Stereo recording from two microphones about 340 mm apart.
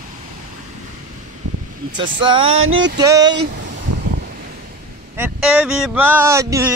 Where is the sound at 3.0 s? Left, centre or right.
Centre.